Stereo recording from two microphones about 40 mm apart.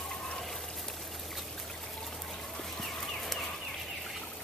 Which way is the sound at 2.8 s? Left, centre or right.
Centre.